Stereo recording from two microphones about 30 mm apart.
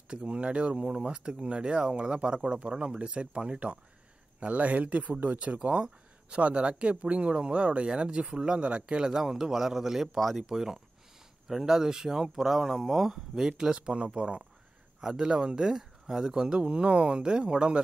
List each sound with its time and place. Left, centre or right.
0.1 s speech: right
9.0 s speech: centre
13.7 s speech: right
15.0 s speech: right
16.6 s speech: right
17.2 s speech: right